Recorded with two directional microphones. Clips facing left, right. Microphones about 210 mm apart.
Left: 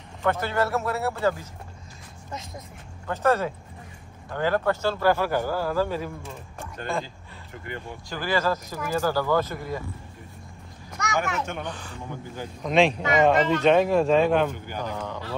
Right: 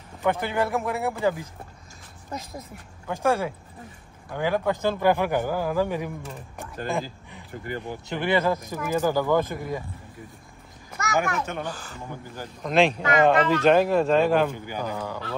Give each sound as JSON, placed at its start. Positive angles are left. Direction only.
{"t": 0.2, "sound": "a man's voice", "side_deg": -15}
{"t": 3.1, "sound": "a man's voice", "side_deg": -10}
{"t": 7.8, "sound": "a man's voice", "side_deg": -20}
{"t": 11.0, "sound": "speech", "side_deg": -5}